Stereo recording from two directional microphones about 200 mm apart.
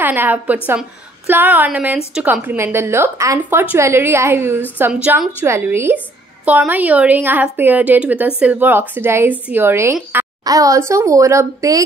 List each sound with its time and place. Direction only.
0.0 s a woman's voice: 10° right (ahead or behind)